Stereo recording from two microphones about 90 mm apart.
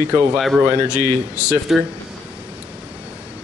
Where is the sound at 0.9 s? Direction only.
35° left (ahead or behind).